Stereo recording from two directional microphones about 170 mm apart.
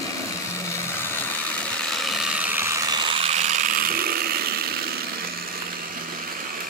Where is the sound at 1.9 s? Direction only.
Centre (ahead or behind); by 4.6 s 60° right (ahead or behind).